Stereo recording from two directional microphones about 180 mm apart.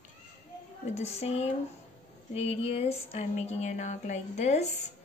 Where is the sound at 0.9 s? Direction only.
35° left (ahead or behind).